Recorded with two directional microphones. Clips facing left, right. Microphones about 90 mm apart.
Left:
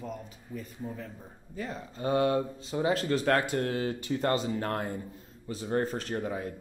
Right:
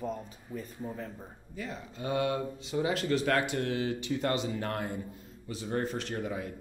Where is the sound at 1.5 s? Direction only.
40° left (ahead or behind).